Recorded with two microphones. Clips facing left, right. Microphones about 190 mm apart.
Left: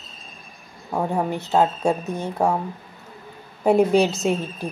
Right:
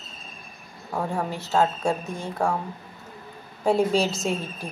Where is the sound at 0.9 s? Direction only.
20° left (ahead or behind).